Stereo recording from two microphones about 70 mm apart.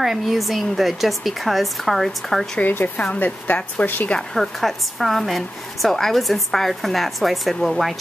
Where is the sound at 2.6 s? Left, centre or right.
Left.